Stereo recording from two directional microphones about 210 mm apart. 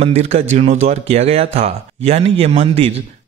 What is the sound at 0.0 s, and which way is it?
Speech, 30° right (ahead or behind).